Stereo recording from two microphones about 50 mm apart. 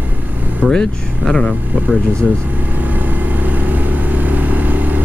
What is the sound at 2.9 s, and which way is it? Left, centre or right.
Vehicle, right.